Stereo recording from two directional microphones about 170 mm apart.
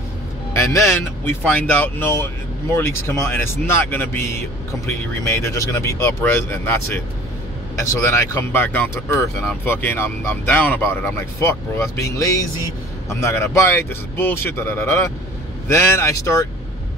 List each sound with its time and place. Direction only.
0.5 s speech: 15° left (ahead or behind)